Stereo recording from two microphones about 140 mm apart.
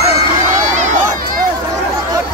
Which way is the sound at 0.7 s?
60° right (ahead or behind).